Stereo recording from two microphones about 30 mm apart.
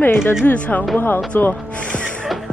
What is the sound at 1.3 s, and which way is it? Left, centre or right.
Music, left.